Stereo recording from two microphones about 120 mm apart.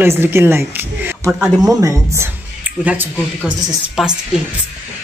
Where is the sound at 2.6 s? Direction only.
15° right (ahead or behind).